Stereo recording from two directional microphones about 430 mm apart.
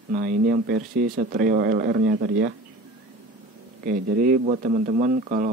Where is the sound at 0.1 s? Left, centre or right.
Centre.